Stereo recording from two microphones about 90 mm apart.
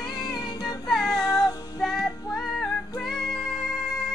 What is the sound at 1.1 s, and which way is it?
Music, 45° left (ahead or behind).